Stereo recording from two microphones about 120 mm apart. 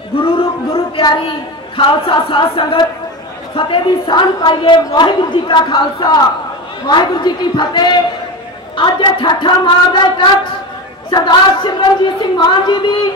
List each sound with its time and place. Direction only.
0.2 s music: 50° left (ahead or behind)
1.0 s a woman's voice: 40° left (ahead or behind)